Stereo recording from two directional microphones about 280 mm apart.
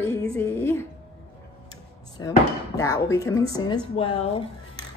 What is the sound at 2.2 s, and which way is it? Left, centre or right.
A woman's voice, centre.